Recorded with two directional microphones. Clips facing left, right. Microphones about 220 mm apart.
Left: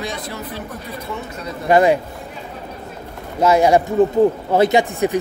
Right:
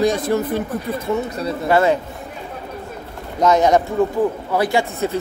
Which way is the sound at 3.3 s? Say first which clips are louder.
Left 1 dB; 10° left (ahead or behind).